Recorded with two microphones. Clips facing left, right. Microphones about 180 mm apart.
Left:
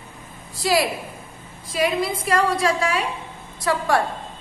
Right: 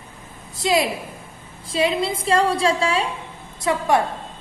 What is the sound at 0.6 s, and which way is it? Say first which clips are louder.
A woman's voice: right 1 dB; 20° right (ahead or behind).